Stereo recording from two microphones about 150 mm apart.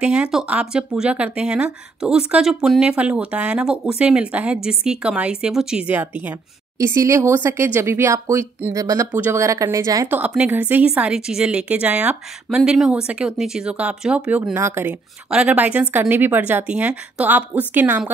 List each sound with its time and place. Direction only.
0.0 s speech: 5° right (ahead or behind)
6.8 s speech: 20° right (ahead or behind)
10.0 s a woman's voice: 10° right (ahead or behind)